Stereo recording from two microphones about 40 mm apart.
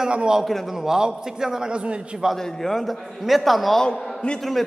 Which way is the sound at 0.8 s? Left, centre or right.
Centre.